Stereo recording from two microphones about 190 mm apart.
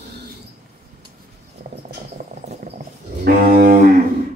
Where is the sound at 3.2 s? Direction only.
45° right (ahead or behind).